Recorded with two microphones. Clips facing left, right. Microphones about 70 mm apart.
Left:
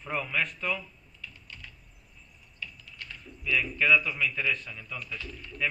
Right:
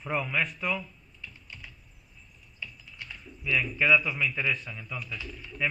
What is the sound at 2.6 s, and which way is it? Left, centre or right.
Typing, centre.